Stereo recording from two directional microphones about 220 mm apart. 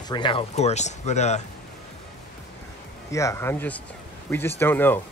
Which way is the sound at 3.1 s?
15° left (ahead or behind).